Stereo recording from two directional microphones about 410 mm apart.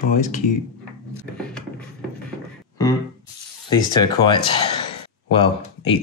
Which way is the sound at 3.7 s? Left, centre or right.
Centre.